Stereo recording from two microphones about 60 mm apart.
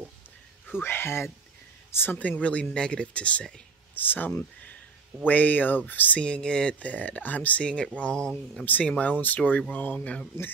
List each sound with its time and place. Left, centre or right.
0.7 s speech: left
2.1 s speech: left
3.9 s speech: left
6.2 s speech: centre